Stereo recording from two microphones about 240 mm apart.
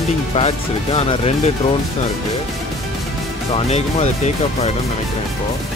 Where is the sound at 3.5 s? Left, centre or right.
Left.